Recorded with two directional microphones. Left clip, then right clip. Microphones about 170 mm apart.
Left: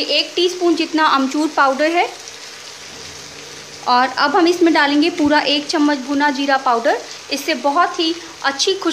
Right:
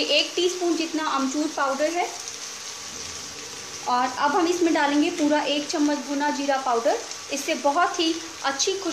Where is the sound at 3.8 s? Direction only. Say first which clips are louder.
Left 8 dB; 30° left (ahead or behind).